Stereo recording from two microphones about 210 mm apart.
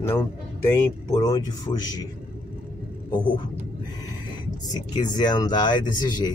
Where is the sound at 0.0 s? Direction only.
10° left (ahead or behind).